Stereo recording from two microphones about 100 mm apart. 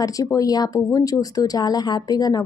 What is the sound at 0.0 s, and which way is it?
Speech, 35° left (ahead or behind).